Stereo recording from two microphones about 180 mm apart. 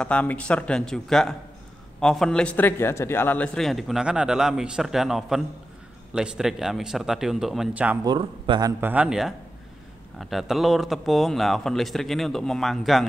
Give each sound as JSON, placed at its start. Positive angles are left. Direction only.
{"t": 0.0, "sound": "a man's voice", "side_deg": 5}
{"t": 8.0, "sound": "speech", "side_deg": -25}
{"t": 8.8, "sound": "a man's voice", "side_deg": -5}